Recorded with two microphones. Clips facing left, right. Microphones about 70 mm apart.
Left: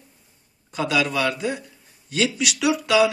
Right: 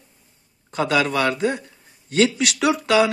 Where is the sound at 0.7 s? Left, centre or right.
Right.